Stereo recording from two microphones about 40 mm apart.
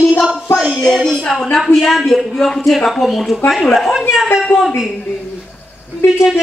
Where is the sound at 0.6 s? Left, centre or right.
Centre.